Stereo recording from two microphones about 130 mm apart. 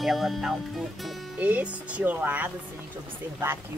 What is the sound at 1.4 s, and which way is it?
Speech, 10° right (ahead or behind).